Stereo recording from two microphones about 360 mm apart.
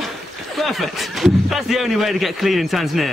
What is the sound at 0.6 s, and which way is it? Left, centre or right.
Speech, centre.